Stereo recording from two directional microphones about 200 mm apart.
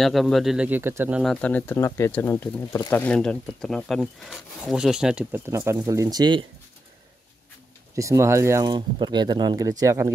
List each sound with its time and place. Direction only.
0.0 s speech: centre (ahead or behind)
1.2 s speech: 5° left (ahead or behind)
5.6 s speech: 20° right (ahead or behind)
7.9 s speech: 15° right (ahead or behind)